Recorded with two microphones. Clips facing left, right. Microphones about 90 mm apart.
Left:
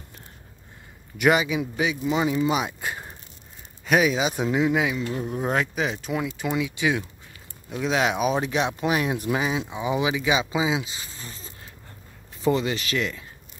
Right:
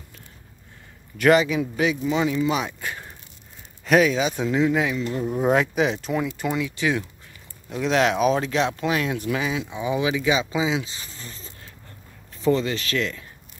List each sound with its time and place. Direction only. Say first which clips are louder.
1.1 s speech: right 3 dB; 10° left (ahead or behind)
2.0 s speech: right 1 dB; 20° left (ahead or behind)
3.8 s speech: right 2 dB; 5° left (ahead or behind)